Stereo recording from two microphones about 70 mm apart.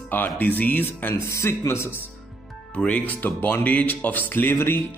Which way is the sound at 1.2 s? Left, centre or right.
Left.